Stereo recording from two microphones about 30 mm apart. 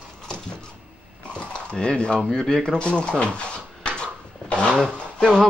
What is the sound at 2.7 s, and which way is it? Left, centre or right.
Drawer open or close, left.